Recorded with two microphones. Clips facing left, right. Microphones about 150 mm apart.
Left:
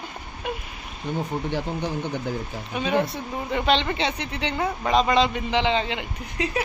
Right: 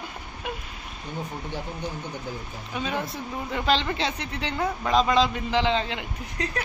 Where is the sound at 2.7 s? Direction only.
Centre (ahead or behind).